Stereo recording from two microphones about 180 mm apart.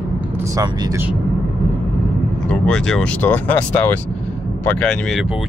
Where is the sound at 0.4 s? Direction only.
15° right (ahead or behind).